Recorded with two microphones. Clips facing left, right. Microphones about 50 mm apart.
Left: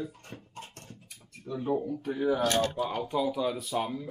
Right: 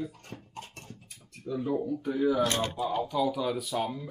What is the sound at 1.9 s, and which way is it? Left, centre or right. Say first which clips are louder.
Speech: right 2 dB; left.